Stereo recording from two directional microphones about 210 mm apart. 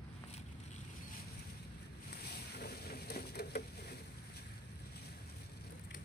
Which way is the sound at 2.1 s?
50° left (ahead or behind).